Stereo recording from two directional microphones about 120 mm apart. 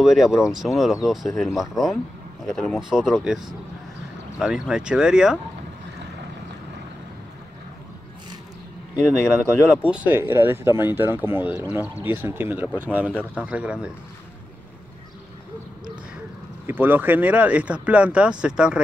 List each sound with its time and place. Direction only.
0.0 s speech: centre (ahead or behind)
4.4 s speech: 5° right (ahead or behind)
9.8 s speech: 10° right (ahead or behind)
16.6 s speech: 15° right (ahead or behind)